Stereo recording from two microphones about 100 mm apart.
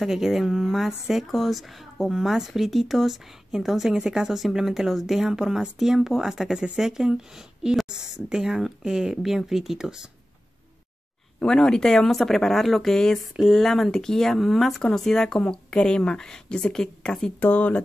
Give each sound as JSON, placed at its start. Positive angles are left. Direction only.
{"t": 0.0, "sound": "speech", "side_deg": -5}
{"t": 11.3, "sound": "speech", "side_deg": 5}
{"t": 17.4, "sound": "speech", "side_deg": 15}